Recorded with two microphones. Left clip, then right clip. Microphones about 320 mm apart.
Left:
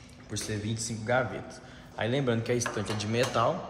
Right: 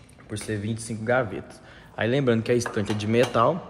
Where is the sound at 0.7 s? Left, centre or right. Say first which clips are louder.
Right 4 dB; right.